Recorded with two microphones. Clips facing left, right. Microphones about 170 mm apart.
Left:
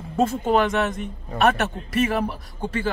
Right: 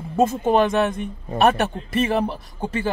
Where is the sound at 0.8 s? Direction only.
30° right (ahead or behind).